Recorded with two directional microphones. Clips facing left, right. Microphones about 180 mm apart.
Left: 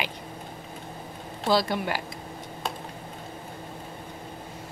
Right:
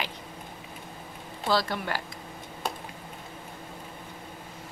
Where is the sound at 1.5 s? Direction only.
15° left (ahead or behind).